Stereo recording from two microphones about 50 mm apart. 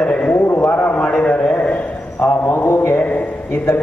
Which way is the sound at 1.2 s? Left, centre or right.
Left.